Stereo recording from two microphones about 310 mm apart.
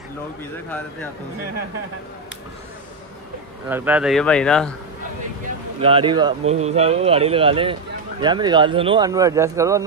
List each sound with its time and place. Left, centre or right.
3.6 s speech: centre
5.8 s speech: centre